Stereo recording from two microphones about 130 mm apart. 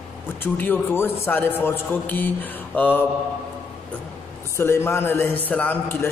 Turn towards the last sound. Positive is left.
turn(degrees=15)  # may be behind; listen again after turning